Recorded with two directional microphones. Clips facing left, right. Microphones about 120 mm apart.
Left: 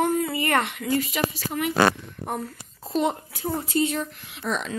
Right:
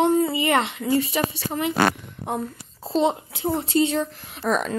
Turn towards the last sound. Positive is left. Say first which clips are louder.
# right 5 dB
turn(degrees=-45)  # may be behind; listen again after turning